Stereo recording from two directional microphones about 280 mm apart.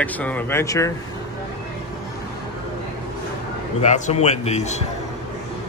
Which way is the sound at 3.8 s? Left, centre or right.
Left.